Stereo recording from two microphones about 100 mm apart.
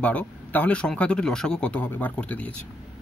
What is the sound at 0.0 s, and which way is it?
Speech, 15° left (ahead or behind).